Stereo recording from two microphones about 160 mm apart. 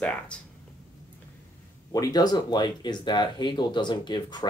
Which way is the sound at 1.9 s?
25° left (ahead or behind).